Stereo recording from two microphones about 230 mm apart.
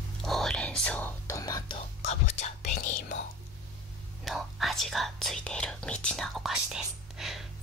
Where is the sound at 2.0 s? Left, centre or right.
Left.